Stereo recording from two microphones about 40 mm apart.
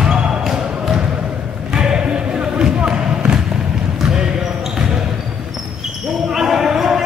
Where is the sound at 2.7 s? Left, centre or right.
Right.